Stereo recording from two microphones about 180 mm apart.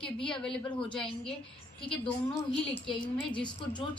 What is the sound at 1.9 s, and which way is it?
Speech, 25° left (ahead or behind).